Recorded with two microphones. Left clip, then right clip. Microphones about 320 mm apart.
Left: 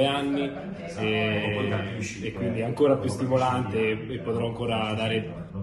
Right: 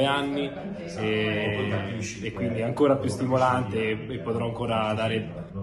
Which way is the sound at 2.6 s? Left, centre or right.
Centre.